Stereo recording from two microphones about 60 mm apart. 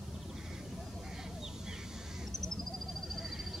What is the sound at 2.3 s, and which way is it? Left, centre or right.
Bird, centre.